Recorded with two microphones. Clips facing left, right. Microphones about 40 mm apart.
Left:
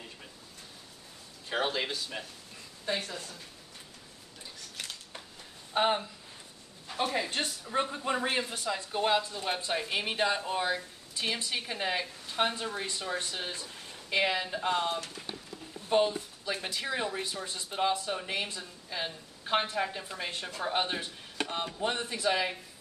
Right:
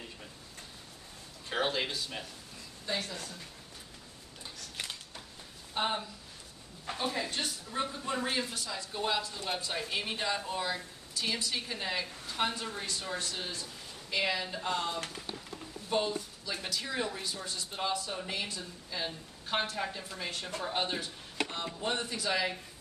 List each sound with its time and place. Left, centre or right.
1.5 s speech: centre
2.9 s speech: left
5.8 s a woman's voice: left
6.9 s a woman's voice: right
7.2 s a woman's voice: left